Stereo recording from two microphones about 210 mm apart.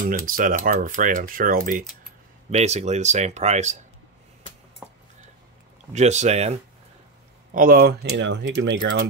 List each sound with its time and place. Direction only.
0.3 s speech: 40° right (ahead or behind)
2.5 s speech: 30° right (ahead or behind)
5.9 s speech: 35° right (ahead or behind)
7.5 s speech: 45° right (ahead or behind)